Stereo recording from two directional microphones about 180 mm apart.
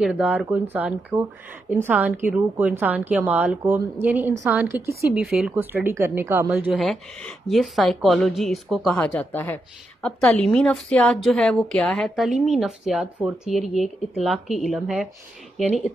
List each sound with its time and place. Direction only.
0.0 s a woman's voice: 5° right (ahead or behind)